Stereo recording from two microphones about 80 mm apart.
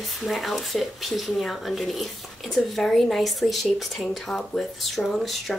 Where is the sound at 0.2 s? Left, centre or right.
Centre.